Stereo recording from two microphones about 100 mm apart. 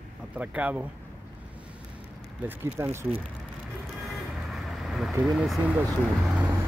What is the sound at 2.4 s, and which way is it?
Speech, 20° right (ahead or behind).